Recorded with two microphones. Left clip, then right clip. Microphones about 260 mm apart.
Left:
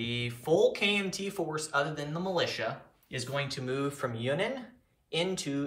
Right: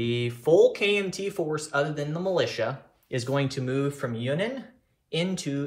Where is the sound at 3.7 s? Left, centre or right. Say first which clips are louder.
Right 2 dB; left.